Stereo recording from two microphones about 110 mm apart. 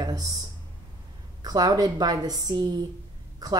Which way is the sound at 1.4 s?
35° right (ahead or behind).